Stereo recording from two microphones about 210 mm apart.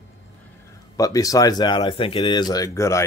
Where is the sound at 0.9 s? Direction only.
15° left (ahead or behind).